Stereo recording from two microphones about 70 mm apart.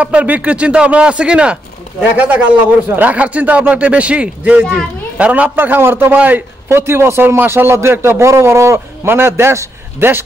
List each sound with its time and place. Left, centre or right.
0.0 s speech: centre
6.7 s a man's voice: right